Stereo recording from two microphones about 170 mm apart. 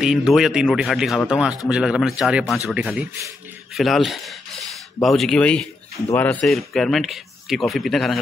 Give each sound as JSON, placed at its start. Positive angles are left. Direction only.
{"t": 0.0, "sound": "a man's voice", "side_deg": -5}